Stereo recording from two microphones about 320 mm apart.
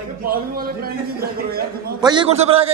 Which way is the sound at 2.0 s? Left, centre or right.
Centre.